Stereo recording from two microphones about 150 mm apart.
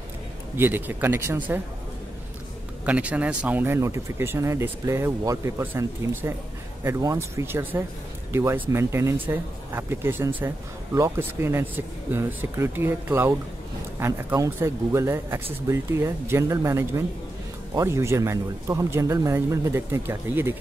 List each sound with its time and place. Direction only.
0.6 s speech: 15° right (ahead or behind)
2.8 s speech: 10° right (ahead or behind)